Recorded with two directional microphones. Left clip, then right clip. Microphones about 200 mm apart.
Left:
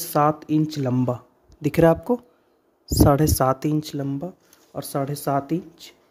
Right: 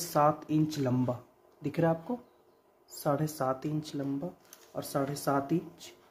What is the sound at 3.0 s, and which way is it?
Speech, 55° left (ahead or behind).